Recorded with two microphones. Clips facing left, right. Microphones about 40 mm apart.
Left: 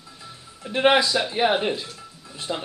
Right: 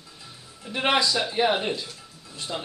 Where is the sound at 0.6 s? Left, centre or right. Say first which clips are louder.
Left 5 dB; centre.